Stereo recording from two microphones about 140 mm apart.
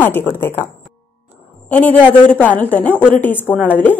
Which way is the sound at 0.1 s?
15° left (ahead or behind).